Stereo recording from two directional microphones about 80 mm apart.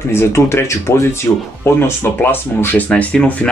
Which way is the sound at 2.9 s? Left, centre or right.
Centre.